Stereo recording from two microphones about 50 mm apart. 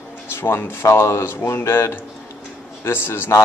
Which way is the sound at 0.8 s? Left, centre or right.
Left.